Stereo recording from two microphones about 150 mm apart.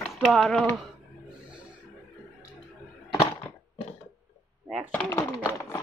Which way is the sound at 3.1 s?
30° left (ahead or behind).